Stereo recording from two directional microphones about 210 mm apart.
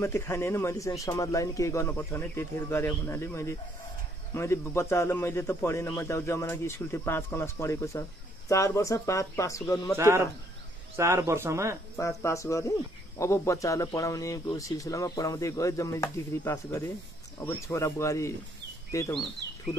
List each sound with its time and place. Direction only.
0.0 s speech: 15° left (ahead or behind)
9.9 s speech: 10° right (ahead or behind)
12.2 s speech: 15° left (ahead or behind)